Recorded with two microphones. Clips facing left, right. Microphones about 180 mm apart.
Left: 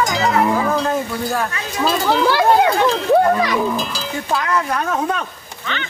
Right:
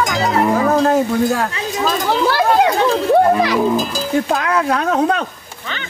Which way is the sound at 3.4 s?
30° right (ahead or behind).